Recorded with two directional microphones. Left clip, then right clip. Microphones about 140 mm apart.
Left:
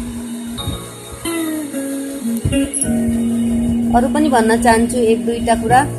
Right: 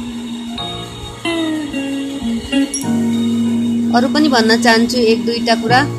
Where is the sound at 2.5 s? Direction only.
25° right (ahead or behind).